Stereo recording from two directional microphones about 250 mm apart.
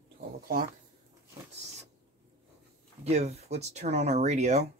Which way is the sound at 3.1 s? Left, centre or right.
Right.